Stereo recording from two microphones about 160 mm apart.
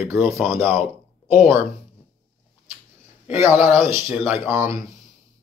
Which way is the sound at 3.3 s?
15° right (ahead or behind).